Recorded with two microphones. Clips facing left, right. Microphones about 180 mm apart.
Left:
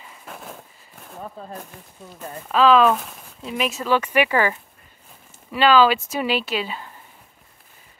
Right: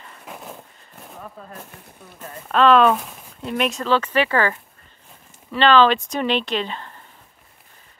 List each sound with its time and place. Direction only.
0.0 s a sound: centre (ahead or behind)
1.4 s speech: 30° left (ahead or behind)
2.1 s speech: 5° left (ahead or behind)